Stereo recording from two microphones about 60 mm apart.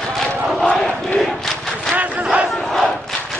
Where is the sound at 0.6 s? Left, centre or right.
Centre.